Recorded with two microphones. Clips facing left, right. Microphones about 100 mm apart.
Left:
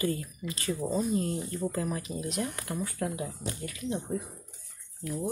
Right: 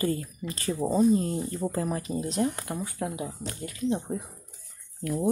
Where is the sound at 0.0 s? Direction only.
35° right (ahead or behind).